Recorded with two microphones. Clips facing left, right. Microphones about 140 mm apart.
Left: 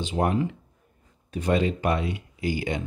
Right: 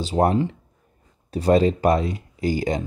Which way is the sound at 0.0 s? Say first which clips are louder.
Right 5 dB; 35° right (ahead or behind).